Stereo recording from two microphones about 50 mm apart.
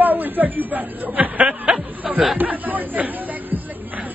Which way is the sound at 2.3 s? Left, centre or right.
Right.